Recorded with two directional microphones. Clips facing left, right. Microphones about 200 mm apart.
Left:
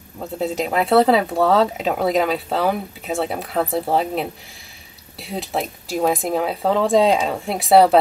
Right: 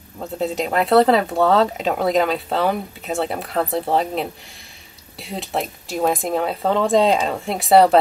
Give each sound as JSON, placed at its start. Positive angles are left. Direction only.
{"t": 0.2, "sound": "speech", "side_deg": 0}